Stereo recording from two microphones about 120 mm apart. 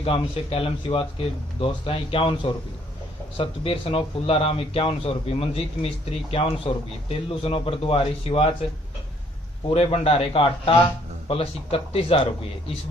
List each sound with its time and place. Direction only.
0.0 s speech: 50° left (ahead or behind)
9.7 s speech: 45° left (ahead or behind)